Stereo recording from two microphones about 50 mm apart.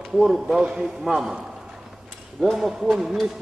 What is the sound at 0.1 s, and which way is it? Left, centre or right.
A man's voice, centre.